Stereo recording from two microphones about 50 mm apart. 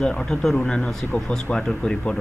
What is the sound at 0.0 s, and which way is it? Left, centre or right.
Speech, centre.